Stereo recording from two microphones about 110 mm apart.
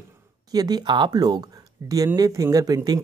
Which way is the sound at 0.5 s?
40° right (ahead or behind).